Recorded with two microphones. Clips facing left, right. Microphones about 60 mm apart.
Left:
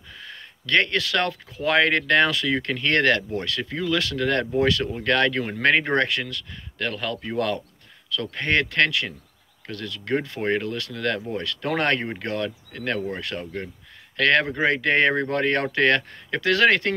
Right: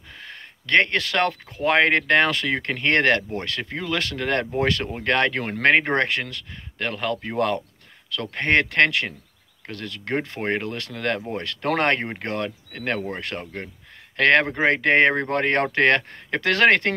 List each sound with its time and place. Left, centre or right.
0.2 s speech: right